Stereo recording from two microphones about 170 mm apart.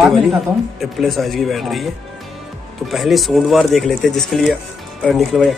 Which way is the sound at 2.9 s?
Centre (ahead or behind).